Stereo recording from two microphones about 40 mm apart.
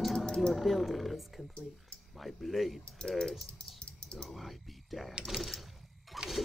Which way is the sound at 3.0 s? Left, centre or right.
Centre.